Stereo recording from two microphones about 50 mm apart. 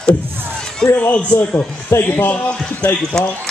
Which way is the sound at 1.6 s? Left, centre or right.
Left.